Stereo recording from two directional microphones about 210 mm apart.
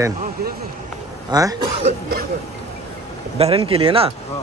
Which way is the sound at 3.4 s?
25° right (ahead or behind).